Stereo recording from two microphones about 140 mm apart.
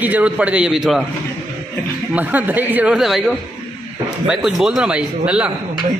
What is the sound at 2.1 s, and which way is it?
A man's voice, 10° right (ahead or behind).